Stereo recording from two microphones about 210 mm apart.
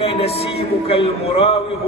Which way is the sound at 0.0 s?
30° left (ahead or behind).